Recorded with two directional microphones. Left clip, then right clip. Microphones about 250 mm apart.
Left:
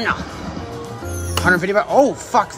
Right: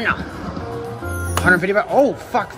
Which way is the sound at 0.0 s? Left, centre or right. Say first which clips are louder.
Even; centre.